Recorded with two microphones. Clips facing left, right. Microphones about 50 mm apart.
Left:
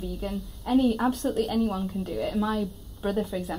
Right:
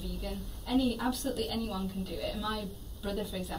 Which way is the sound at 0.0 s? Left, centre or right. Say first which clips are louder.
Left 7 dB; left.